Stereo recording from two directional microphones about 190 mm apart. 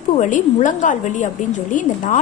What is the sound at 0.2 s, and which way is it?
A woman's voice, 40° left (ahead or behind).